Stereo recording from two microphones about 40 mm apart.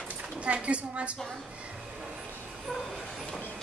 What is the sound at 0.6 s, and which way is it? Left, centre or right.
Speech, right.